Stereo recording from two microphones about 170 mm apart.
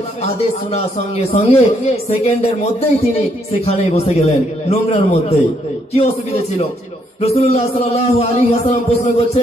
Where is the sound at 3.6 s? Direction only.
40° left (ahead or behind).